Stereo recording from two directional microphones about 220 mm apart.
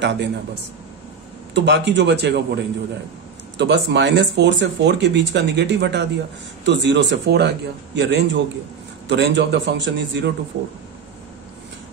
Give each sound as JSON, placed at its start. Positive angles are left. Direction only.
{"t": 0.0, "sound": "speech", "side_deg": -50}
{"t": 1.5, "sound": "speech", "side_deg": -50}